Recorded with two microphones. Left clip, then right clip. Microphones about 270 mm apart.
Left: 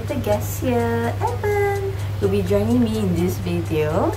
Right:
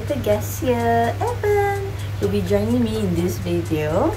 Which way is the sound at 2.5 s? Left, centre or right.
Centre.